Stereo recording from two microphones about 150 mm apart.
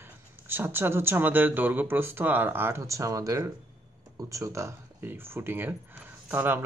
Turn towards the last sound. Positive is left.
turn(degrees=-15)  # may be behind; listen again after turning